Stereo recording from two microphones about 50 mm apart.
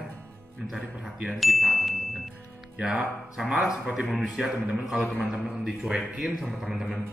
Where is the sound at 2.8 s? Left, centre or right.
Centre.